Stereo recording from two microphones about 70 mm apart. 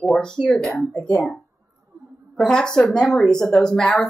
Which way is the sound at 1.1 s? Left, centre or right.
Centre.